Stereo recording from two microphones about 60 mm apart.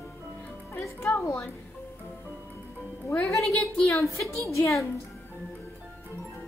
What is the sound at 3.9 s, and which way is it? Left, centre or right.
A woman's voice, left.